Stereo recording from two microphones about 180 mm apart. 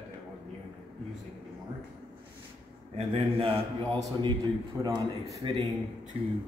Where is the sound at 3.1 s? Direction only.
30° right (ahead or behind).